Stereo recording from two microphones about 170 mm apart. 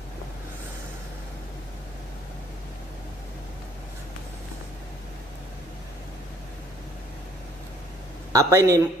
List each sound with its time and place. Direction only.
8.3 s speech: 15° right (ahead or behind)